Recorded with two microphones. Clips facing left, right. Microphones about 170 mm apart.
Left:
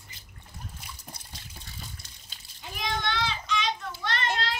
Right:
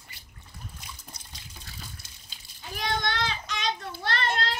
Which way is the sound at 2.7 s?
40° right (ahead or behind).